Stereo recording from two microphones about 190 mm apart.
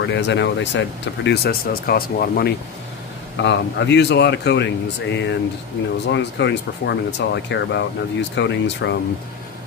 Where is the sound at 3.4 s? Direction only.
65° left (ahead or behind).